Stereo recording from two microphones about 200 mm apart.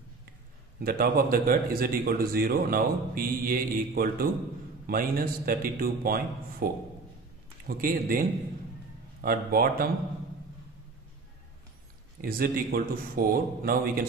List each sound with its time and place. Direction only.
0.7 s a man's voice: 50° right (ahead or behind)
12.2 s a man's voice: 50° right (ahead or behind)